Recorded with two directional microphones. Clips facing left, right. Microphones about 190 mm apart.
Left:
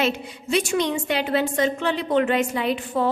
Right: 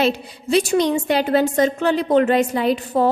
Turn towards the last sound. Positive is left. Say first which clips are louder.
# right 5 dB
turn(degrees=-40)  # may be behind; listen again after turning